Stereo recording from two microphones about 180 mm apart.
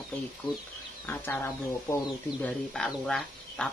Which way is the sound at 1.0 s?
10° left (ahead or behind).